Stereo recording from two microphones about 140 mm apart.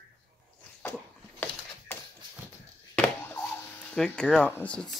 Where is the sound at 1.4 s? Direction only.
15° left (ahead or behind).